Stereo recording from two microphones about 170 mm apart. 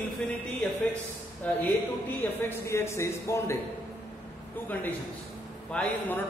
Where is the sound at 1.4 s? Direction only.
10° left (ahead or behind).